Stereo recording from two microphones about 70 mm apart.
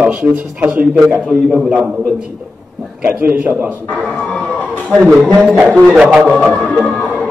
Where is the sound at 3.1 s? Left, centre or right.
Right.